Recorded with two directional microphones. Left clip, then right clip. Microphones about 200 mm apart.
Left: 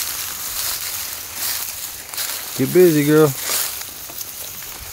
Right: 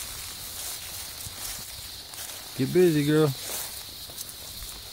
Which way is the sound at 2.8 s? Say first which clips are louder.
Left 9 dB; centre (ahead or behind).